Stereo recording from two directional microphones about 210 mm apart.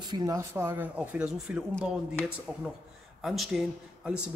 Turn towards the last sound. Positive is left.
turn(degrees=-5)  # may be behind; listen again after turning